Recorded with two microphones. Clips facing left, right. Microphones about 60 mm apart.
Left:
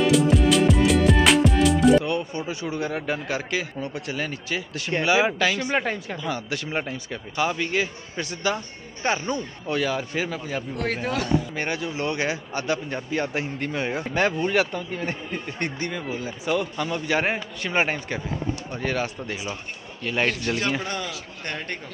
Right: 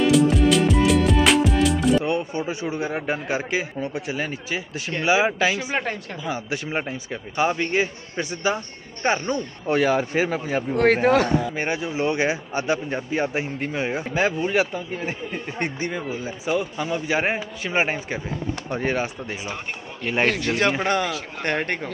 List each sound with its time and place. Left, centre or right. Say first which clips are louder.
0.0 s music: right 2 dB; centre
2.0 s a man's voice: right 2 dB; right
5.8 s speech: left 1 dB; centre
6.2 s speech: right 3 dB; centre
9.2 s speech: right 2 dB; centre
9.7 s speech: right 6 dB; right
10.8 s a man's voice: right 11 dB; right
11.5 s speech: right 2 dB; centre
18.7 s a man's voice: right 4 dB; right
20.4 s a man's voice: right 5 dB; right